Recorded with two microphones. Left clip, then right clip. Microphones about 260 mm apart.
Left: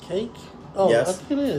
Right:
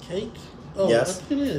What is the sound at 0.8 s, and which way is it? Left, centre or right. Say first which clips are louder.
Speech: left 2 dB; centre.